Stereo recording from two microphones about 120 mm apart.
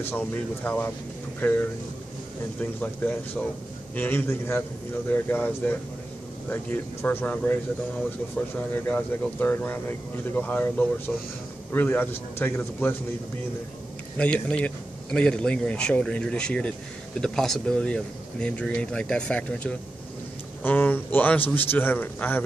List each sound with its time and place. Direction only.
0.0 s speech: 15° left (ahead or behind)
14.1 s speech: 10° left (ahead or behind)